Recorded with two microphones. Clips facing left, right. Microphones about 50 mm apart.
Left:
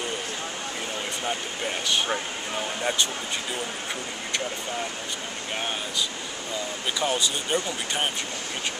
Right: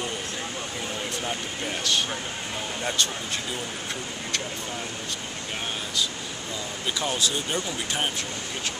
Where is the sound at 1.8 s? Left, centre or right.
Centre.